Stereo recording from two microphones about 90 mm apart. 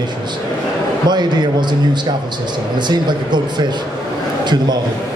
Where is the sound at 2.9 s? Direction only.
55° right (ahead or behind).